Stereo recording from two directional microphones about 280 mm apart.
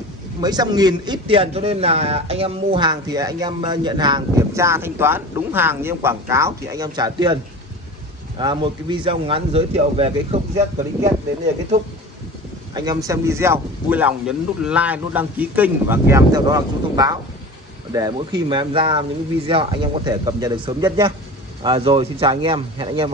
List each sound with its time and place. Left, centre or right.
0.4 s a man's voice: centre
8.4 s speech: centre
12.7 s a man's voice: centre